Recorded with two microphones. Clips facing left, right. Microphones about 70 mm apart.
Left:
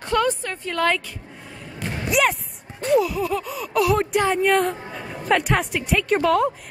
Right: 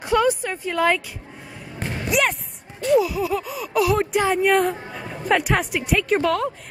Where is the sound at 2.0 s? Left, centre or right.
Centre.